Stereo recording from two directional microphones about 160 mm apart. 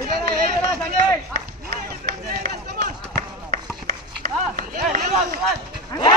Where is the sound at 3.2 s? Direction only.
55° right (ahead or behind).